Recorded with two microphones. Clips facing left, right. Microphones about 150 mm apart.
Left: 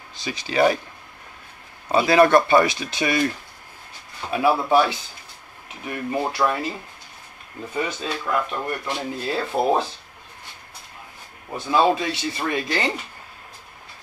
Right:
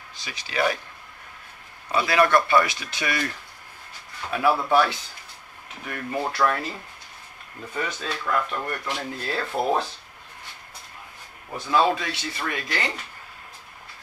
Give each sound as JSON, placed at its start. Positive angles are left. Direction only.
{"t": 0.2, "sound": "speech", "side_deg": 25}
{"t": 1.9, "sound": "speech", "side_deg": 25}
{"t": 8.0, "sound": "speech", "side_deg": 15}
{"t": 11.5, "sound": "speech", "side_deg": 25}